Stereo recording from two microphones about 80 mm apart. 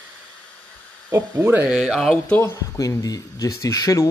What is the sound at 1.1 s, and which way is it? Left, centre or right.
Speech, right.